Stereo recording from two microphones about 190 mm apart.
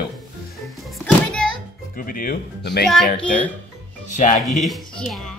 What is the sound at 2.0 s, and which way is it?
Speech, 45° left (ahead or behind).